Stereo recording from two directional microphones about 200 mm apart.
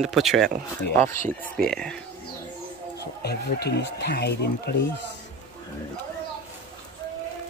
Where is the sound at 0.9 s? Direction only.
10° left (ahead or behind).